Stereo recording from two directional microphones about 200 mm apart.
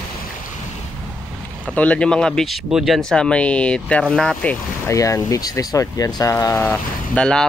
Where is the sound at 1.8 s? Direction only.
5° left (ahead or behind).